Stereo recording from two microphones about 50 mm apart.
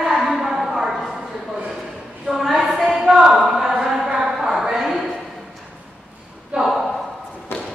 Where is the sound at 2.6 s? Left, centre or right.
Centre.